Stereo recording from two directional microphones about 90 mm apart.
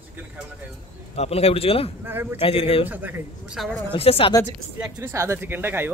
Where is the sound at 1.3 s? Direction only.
90° left.